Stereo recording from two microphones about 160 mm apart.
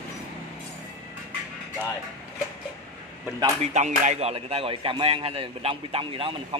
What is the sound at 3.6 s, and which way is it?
Speech, 45° right (ahead or behind).